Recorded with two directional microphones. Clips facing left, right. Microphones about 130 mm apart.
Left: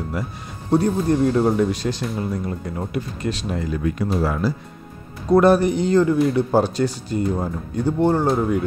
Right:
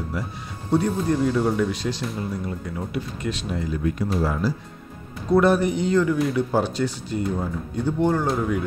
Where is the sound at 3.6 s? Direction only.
65° left (ahead or behind).